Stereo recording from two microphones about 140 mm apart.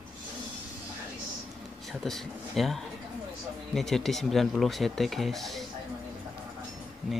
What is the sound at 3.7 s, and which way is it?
Speech, centre (ahead or behind).